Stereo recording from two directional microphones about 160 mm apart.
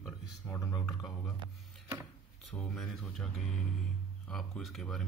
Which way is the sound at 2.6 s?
Centre (ahead or behind).